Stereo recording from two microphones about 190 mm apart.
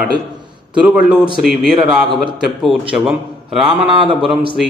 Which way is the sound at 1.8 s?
5° right (ahead or behind).